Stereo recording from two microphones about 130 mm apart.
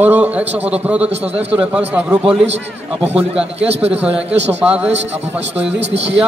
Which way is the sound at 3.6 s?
50° right (ahead or behind).